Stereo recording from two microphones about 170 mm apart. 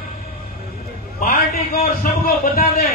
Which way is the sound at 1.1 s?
55° left (ahead or behind).